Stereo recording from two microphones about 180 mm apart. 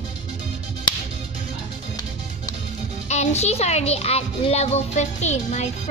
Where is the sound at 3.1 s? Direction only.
40° left (ahead or behind).